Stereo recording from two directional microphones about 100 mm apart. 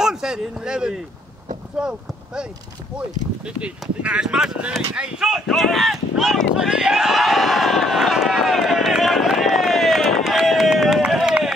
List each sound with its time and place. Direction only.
0.0 s speech: 5° right (ahead or behind)
3.4 s speech: 10° right (ahead or behind)
5.2 s a sound: centre (ahead or behind)